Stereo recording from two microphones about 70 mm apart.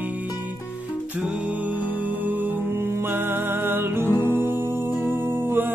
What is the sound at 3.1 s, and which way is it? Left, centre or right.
Music, right.